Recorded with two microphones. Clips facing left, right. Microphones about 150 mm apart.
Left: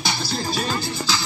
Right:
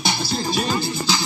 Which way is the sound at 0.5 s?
15° right (ahead or behind).